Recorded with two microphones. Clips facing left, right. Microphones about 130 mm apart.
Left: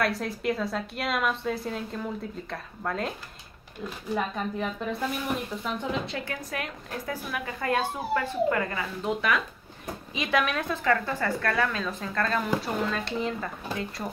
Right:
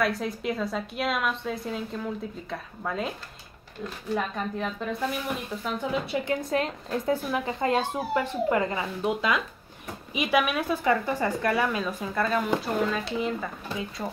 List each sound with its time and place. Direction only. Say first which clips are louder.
0.0 s a woman's voice: even; centre (ahead or behind)
4.1 s a woman's voice: even; centre (ahead or behind)
5.6 s a woman's voice: right 1 dB; 10° right (ahead or behind)
6.5 s a woman's voice: right 7 dB; 30° right (ahead or behind); by 14.0 s 5° right (ahead or behind)